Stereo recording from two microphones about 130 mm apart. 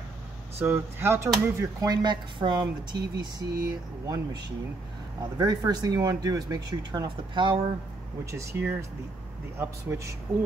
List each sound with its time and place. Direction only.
0.6 s speech: 20° right (ahead or behind)
5.4 s speech: 30° right (ahead or behind)
8.3 s speech: 20° right (ahead or behind)